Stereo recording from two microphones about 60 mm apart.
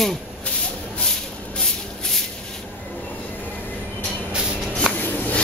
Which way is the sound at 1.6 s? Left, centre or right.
Centre.